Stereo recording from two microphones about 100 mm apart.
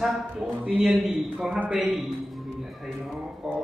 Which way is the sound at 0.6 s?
15° right (ahead or behind).